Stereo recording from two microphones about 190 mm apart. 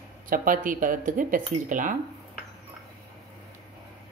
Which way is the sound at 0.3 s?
45° right (ahead or behind).